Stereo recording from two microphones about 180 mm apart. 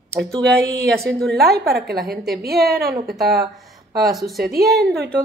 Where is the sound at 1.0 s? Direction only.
Centre (ahead or behind).